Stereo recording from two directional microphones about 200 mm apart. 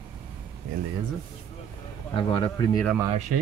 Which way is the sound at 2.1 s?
25° left (ahead or behind).